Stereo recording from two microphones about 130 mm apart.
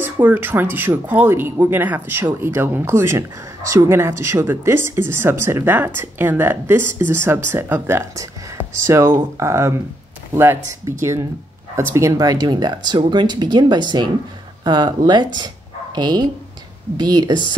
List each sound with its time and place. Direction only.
0.0 s speech: 15° right (ahead or behind); by 17.4 s 35° right (ahead or behind)